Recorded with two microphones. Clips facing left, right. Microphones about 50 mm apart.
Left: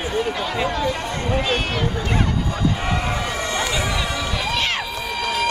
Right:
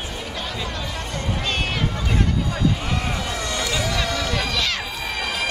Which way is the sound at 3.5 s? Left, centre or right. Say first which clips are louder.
Left 1 dB; left.